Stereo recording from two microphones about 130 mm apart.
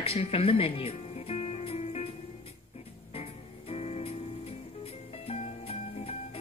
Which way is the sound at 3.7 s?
55° left (ahead or behind).